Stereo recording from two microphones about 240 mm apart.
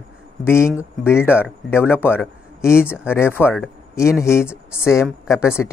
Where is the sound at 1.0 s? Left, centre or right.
Centre.